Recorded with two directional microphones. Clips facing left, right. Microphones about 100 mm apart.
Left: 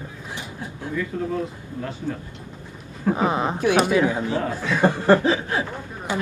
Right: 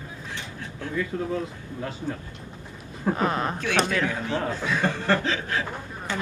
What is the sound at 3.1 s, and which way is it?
Speech, 15° left (ahead or behind).